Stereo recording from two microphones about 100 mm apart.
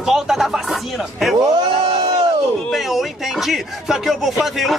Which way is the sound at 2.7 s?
Centre (ahead or behind).